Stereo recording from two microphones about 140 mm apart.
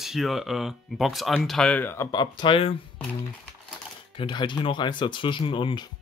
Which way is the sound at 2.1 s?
35° left (ahead or behind).